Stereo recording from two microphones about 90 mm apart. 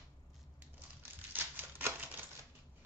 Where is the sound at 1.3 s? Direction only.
25° right (ahead or behind).